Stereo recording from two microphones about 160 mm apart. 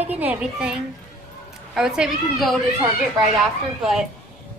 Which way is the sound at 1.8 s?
5° right (ahead or behind).